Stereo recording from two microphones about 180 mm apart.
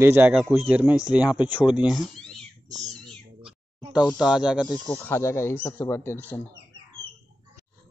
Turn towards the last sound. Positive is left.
turn(degrees=10)  # may be behind; listen again after turning